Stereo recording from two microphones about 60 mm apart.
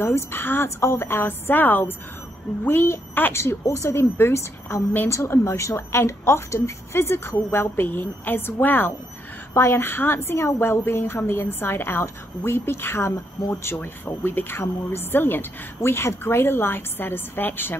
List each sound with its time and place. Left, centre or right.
0.0 s a woman's voice: left
0.7 s a woman's voice: left
3.9 s a woman's voice: left
9.5 s a woman's voice: left
14.0 s a woman's voice: left